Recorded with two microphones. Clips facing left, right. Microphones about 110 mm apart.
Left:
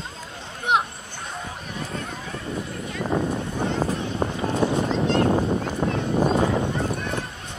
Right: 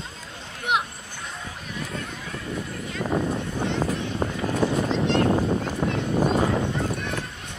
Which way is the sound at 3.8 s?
30° left (ahead or behind).